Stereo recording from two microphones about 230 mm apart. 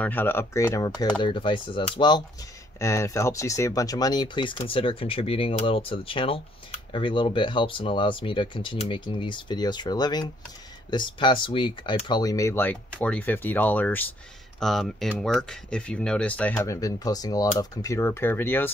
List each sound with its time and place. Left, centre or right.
0.0 s speech: centre